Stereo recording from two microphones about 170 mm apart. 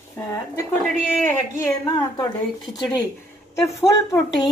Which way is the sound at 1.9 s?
20° left (ahead or behind).